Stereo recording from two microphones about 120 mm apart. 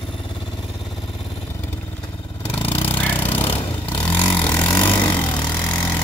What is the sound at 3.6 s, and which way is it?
Vehicle, 15° left (ahead or behind).